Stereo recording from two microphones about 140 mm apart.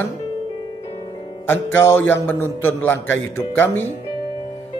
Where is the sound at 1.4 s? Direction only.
15° left (ahead or behind).